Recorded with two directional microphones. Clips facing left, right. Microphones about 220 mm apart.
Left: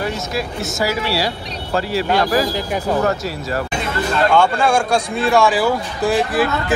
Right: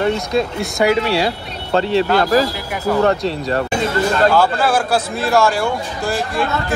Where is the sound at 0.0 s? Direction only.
25° right (ahead or behind).